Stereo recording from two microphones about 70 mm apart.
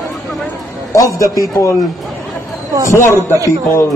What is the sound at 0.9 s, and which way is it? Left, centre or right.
Speech, left.